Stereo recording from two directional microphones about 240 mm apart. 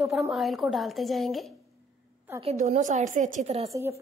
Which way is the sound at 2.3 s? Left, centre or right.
Right.